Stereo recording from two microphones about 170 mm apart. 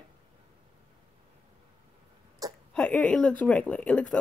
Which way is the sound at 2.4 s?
20° right (ahead or behind).